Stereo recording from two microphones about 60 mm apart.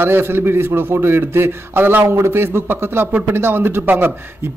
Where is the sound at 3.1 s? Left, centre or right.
Right.